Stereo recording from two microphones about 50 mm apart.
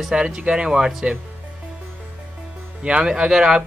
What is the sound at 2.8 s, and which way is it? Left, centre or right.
Speech, right.